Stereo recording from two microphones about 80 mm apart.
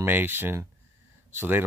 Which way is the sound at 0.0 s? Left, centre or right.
Right.